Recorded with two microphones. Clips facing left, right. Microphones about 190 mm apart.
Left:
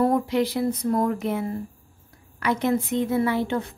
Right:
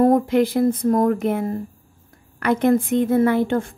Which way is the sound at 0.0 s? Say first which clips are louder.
Right 5 dB; 50° right (ahead or behind).